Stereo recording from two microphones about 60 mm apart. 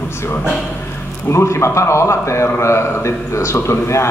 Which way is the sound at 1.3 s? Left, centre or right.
Left.